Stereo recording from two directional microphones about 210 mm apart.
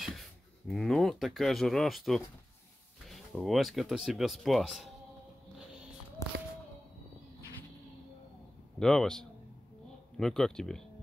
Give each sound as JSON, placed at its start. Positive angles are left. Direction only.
{"t": 0.0, "sound": "speech", "side_deg": 0}
{"t": 8.7, "sound": "speech", "side_deg": 0}